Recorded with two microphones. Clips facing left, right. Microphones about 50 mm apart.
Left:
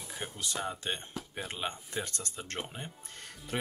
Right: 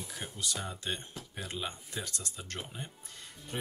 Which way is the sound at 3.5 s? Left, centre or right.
Left.